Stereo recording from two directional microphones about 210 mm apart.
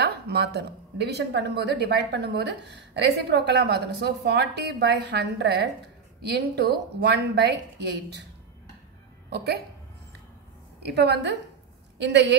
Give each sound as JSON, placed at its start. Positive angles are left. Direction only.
{"t": 0.0, "sound": "speech", "side_deg": -50}
{"t": 9.3, "sound": "speech", "side_deg": -50}
{"t": 10.8, "sound": "a woman's voice", "side_deg": -50}